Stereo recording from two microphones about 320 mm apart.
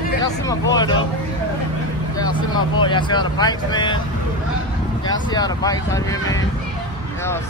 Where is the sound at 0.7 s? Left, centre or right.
Centre.